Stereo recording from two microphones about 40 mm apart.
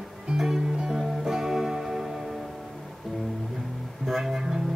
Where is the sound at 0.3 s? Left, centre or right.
Right.